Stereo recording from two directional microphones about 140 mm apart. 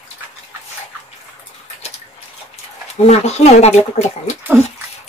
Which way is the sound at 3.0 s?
50° left (ahead or behind).